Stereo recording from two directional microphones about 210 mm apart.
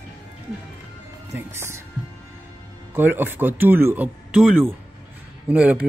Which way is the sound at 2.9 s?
10° right (ahead or behind).